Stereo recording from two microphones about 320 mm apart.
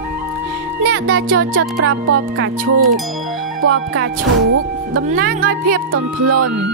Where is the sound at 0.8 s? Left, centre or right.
Right.